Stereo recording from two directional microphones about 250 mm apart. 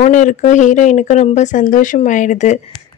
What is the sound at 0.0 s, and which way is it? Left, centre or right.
Speech, left.